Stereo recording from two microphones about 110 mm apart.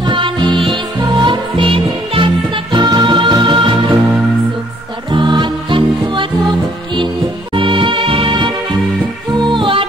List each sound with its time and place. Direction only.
0.0 s music: 45° right (ahead or behind)
5.1 s music: 45° right (ahead or behind)
7.5 s music: 50° right (ahead or behind)